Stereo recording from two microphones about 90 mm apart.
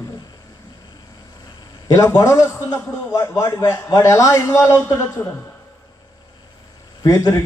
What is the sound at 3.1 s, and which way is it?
A man's voice, 35° left (ahead or behind).